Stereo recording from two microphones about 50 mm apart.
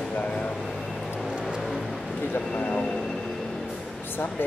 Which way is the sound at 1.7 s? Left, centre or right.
Centre.